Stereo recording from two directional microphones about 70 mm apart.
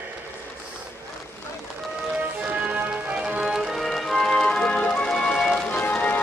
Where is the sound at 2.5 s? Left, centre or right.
Right.